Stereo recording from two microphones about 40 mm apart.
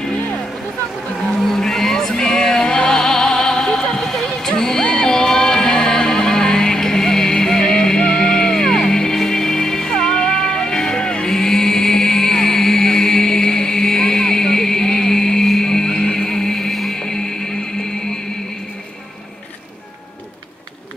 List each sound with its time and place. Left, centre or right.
1.4 s music: centre
4.0 s a sound: centre
4.5 s music: centre